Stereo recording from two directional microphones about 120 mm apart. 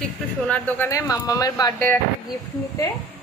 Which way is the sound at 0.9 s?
30° left (ahead or behind).